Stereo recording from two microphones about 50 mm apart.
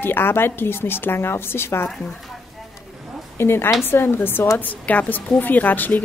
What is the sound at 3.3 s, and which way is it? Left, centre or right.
A woman's voice, left.